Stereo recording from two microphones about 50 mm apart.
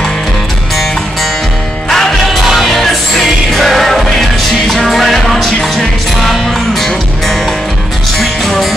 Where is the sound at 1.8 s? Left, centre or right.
Centre.